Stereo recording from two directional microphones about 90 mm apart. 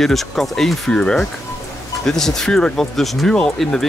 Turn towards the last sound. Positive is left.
turn(degrees=5)  # may be behind; listen again after turning